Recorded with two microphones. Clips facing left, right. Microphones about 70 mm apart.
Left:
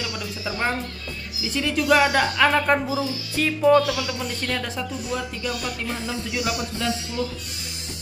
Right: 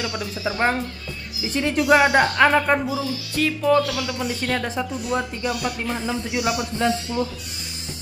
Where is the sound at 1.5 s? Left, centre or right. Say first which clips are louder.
Right 2 dB; right.